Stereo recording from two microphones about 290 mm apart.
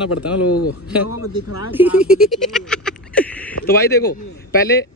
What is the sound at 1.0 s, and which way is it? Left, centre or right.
Speech, left.